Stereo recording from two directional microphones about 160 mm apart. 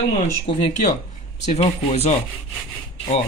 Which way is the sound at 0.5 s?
35° left (ahead or behind).